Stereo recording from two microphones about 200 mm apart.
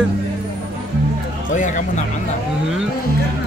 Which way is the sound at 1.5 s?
40° left (ahead or behind).